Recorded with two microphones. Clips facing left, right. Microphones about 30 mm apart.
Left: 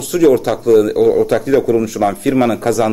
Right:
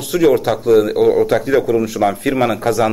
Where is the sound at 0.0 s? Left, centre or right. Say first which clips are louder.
Left 2 dB; centre.